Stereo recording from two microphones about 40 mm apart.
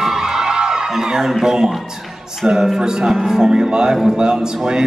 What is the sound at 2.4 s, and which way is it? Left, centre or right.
A man's voice, centre.